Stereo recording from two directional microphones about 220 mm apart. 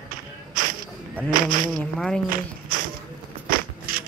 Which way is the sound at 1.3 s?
40° right (ahead or behind).